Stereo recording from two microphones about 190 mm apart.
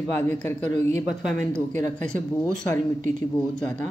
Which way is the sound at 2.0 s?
5° left (ahead or behind).